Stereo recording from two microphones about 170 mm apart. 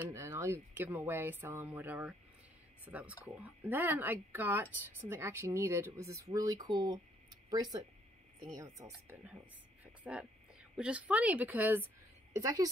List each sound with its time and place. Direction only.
0.1 s speech: 15° right (ahead or behind)
8.5 s a woman's voice: 20° right (ahead or behind)